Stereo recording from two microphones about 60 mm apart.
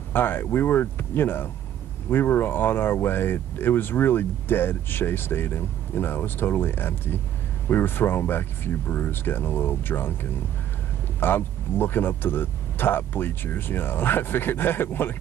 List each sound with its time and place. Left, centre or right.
0.1 s speech: left
11.1 s speech: left